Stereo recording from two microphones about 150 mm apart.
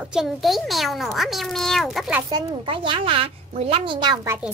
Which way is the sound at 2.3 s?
35° right (ahead or behind).